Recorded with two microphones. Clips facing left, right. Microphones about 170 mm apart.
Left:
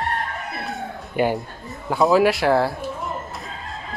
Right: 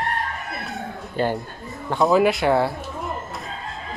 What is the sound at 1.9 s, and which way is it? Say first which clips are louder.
Speech: left 1 dB; centre (ahead or behind).